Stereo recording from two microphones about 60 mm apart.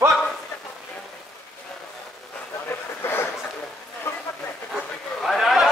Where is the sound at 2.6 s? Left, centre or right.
Left.